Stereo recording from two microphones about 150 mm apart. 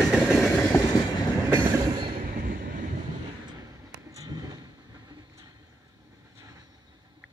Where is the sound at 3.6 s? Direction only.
25° right (ahead or behind).